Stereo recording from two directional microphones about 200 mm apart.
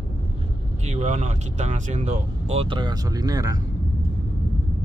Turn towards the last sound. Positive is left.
turn(degrees=-20)  # may be behind; listen again after turning